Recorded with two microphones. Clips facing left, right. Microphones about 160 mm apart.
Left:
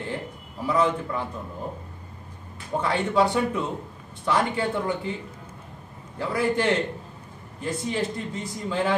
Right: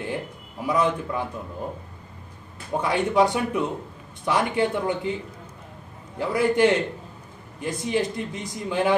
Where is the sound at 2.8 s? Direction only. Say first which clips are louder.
Right 2 dB; 15° right (ahead or behind).